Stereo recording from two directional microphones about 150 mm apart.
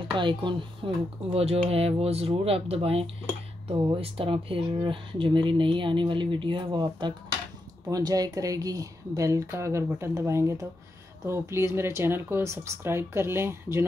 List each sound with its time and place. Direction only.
0.2 s speech: 35° right (ahead or behind); by 13.8 s 15° right (ahead or behind)